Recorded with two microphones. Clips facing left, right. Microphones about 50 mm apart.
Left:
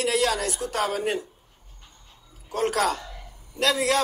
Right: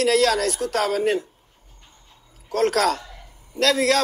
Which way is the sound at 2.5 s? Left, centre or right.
Right.